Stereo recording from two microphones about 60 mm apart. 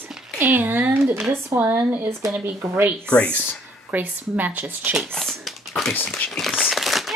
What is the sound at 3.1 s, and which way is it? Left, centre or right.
Speech, centre.